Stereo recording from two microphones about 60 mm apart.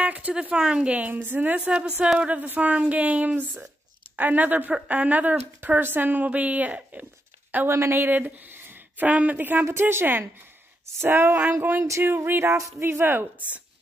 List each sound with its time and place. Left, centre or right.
0.0 s speech: right
0.9 s speech: right
1.6 s speech: centre
2.1 s speech: right
7.7 s female singing: right
8.0 s speech: right
9.7 s a woman's voice: right
11.0 s female singing: right
11.3 s a woman's voice: right
12.4 s speech: right
12.8 s a woman's voice: right